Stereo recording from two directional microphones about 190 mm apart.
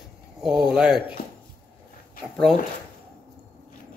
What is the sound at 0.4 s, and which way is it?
Speech, centre (ahead or behind).